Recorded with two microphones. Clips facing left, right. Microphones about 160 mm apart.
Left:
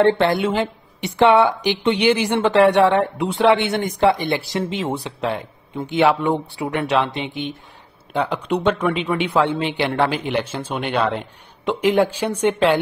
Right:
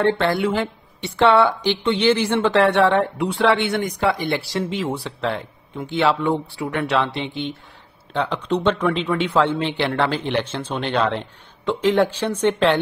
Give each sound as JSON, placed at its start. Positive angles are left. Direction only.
{"t": 0.0, "sound": "speech", "side_deg": 20}